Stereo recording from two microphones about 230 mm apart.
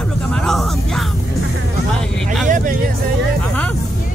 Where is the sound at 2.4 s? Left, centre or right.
Right.